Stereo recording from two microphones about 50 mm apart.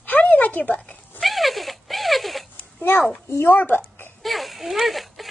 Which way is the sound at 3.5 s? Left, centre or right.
Left.